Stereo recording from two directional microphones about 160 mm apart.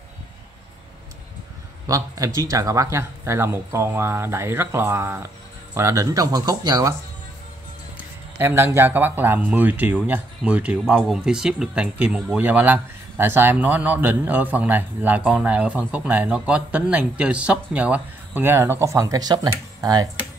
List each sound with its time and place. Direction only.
1.9 s speech: 20° right (ahead or behind)
8.4 s speech: 15° right (ahead or behind)